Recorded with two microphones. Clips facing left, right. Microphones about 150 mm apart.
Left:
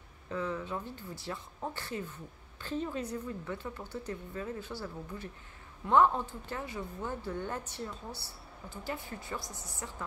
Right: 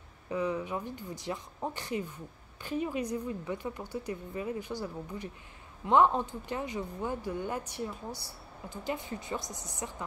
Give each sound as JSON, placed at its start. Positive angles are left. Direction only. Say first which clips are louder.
{"t": 0.3, "sound": "speech", "louder": "right 3 dB", "side_deg": -15}